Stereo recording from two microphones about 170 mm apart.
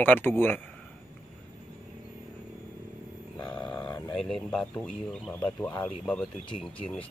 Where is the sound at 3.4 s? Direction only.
25° left (ahead or behind).